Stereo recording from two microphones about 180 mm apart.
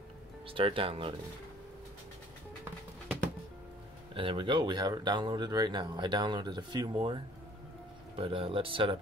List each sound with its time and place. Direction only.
0.5 s speech: 30° right (ahead or behind)
4.1 s speech: 30° right (ahead or behind)
8.2 s speech: 30° right (ahead or behind)